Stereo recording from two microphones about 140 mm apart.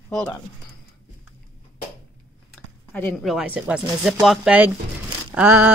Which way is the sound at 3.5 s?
10° right (ahead or behind).